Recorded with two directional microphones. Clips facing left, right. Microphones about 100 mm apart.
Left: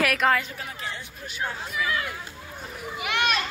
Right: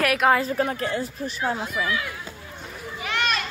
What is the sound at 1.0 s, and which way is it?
Speech, 35° right (ahead or behind).